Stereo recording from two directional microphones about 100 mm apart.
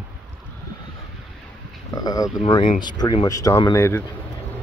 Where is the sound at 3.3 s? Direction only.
35° left (ahead or behind).